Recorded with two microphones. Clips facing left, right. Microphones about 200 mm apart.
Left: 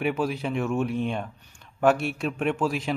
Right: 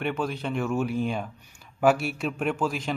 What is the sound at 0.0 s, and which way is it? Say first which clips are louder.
Speech: left 2 dB; 5° left (ahead or behind).